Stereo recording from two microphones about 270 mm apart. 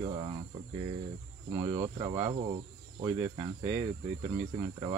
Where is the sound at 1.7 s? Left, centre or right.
Centre.